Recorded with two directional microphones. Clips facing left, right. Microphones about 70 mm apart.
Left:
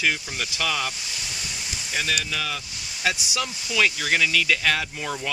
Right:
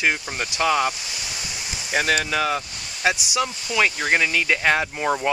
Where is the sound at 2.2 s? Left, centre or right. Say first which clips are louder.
Right 7 dB; right.